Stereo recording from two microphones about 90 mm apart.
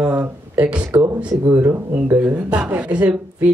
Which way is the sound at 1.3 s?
30° right (ahead or behind).